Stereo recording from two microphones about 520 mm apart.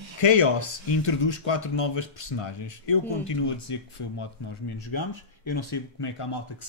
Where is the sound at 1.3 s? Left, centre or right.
Left.